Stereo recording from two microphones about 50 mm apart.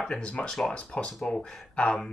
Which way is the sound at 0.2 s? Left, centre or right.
Left.